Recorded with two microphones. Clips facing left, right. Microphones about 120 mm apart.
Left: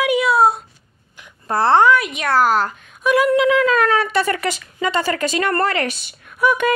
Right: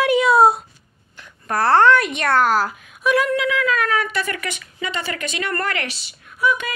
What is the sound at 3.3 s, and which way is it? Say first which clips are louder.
Speech: left 6 dB; 25° left (ahead or behind).